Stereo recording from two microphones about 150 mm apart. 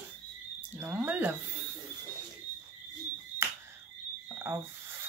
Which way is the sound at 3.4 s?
15° right (ahead or behind).